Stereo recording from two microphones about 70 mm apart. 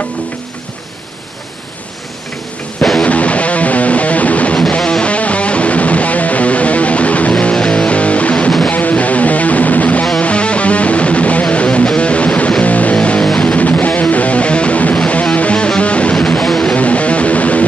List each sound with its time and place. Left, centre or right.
3.0 s music: centre
16.7 s music: centre